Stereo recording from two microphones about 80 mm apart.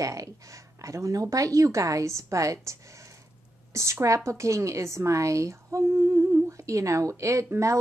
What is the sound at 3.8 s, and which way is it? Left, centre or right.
Speech, right.